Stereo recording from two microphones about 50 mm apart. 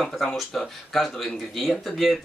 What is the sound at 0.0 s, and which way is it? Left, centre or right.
Speech, centre.